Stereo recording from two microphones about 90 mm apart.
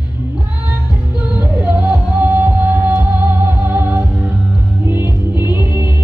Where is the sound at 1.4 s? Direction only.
20° right (ahead or behind).